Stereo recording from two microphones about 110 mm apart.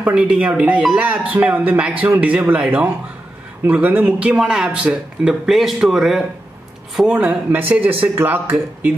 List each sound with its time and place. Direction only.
0.0 s speech: 10° right (ahead or behind)